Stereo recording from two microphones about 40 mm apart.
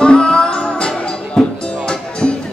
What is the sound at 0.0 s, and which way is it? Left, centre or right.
Music, left.